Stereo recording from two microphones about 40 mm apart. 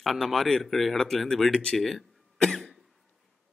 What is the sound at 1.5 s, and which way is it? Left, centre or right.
Speech, left.